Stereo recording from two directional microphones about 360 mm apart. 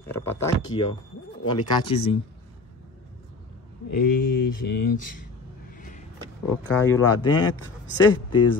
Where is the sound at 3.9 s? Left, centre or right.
Left.